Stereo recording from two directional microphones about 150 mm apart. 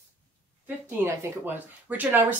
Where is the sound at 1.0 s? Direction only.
15° right (ahead or behind).